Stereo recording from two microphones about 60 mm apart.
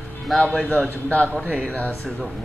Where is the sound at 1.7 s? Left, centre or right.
Left.